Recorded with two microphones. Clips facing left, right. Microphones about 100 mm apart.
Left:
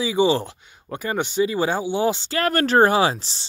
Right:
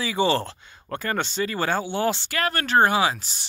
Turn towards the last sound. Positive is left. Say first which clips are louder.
# left 3 dB
turn(degrees=30)  # may be behind; listen again after turning